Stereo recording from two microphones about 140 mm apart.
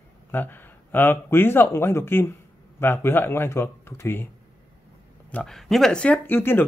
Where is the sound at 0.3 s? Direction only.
15° left (ahead or behind).